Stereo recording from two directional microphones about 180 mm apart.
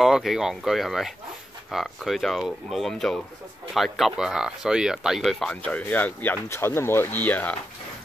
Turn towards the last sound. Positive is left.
turn(degrees=10)  # may be behind; listen again after turning